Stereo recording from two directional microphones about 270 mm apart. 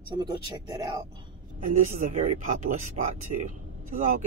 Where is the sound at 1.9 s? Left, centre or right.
Right.